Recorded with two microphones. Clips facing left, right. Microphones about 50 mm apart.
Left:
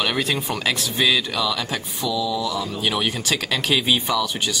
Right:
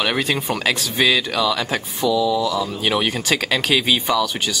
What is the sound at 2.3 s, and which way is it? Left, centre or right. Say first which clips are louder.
Speech: right 4 dB; centre.